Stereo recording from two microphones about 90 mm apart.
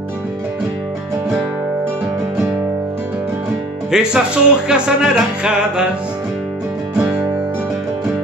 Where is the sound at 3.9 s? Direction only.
5° right (ahead or behind).